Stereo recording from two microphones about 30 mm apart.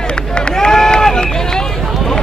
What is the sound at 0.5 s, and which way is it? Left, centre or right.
Run, centre.